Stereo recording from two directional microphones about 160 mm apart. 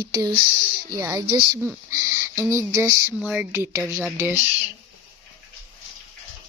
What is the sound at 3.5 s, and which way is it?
Speech, 15° right (ahead or behind).